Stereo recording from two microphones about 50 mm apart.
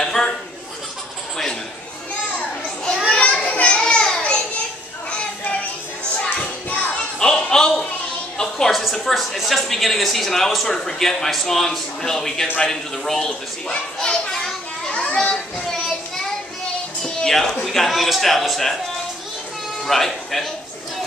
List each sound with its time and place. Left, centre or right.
0.0 s chuckle: centre
2.3 s children playing: centre
6.1 s a sound: left
7.2 s a sound: centre
8.7 s speech: centre
13.9 s children playing: centre
15.8 s a sound: centre
17.0 s music: centre
17.6 s a man's voice: centre
19.8 s speech: centre